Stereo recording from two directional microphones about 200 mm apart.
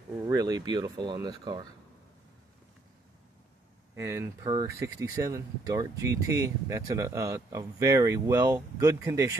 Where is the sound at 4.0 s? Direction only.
15° right (ahead or behind).